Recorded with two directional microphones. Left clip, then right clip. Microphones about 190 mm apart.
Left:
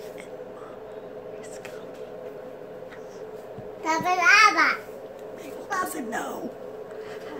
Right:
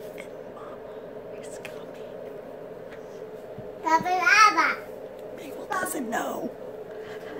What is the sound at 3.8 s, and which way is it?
Speech, 30° left (ahead or behind).